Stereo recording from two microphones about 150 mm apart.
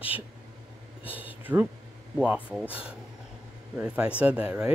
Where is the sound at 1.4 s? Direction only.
10° right (ahead or behind).